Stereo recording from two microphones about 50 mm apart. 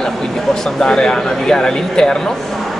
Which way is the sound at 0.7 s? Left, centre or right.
Centre.